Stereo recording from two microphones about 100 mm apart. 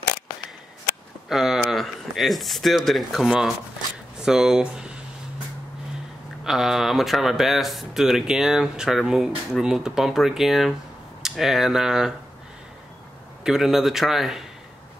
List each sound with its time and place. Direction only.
1.3 s speech: centre (ahead or behind)
6.4 s speech: 5° right (ahead or behind)
13.4 s speech: 5° right (ahead or behind)